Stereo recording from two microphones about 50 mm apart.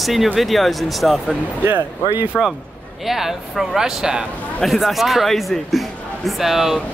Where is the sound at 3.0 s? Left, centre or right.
Centre.